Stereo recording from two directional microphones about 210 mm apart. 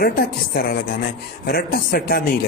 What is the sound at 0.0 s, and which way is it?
A man's voice, 45° left (ahead or behind).